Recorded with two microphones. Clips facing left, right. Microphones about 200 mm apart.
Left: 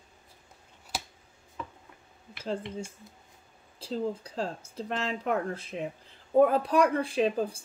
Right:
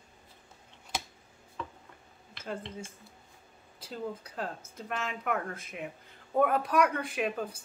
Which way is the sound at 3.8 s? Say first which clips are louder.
Left 6 dB; 30° left (ahead or behind).